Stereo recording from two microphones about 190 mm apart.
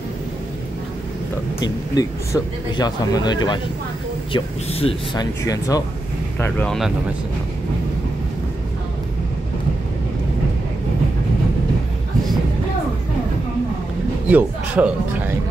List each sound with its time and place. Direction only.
1.6 s a man's voice: 20° left (ahead or behind)
6.4 s speech: 5° left (ahead or behind)
14.3 s speech: 10° right (ahead or behind)